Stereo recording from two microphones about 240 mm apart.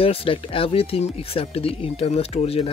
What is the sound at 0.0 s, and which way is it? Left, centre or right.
Speech, left.